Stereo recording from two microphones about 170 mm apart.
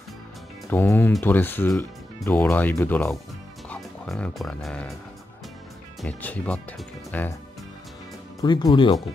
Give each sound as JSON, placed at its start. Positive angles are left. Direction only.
{"t": 0.7, "sound": "speech", "side_deg": 15}
{"t": 6.0, "sound": "speech", "side_deg": 10}
{"t": 8.4, "sound": "speech", "side_deg": 25}